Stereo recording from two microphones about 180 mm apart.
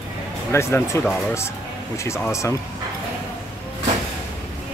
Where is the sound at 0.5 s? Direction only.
15° left (ahead or behind).